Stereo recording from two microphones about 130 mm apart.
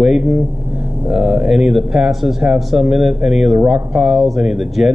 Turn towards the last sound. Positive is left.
turn(degrees=-5)  # may be behind; listen again after turning